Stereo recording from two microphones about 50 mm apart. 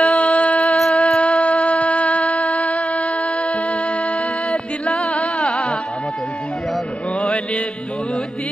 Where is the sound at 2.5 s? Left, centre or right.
Centre.